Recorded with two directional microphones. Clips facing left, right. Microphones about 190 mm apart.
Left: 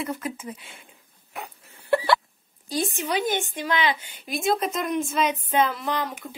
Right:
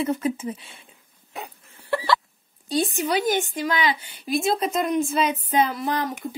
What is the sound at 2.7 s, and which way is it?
Speech, 40° right (ahead or behind).